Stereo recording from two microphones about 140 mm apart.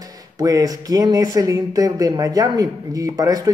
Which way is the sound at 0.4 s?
25° right (ahead or behind).